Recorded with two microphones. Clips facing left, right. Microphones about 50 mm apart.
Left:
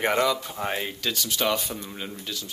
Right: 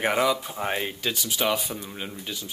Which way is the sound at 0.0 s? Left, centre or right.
Centre.